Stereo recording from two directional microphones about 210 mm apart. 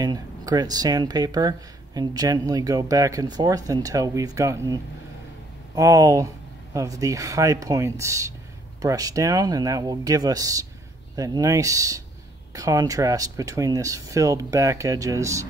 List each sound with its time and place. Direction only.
0.0 s speech: 20° right (ahead or behind)
5.8 s speech: 15° right (ahead or behind)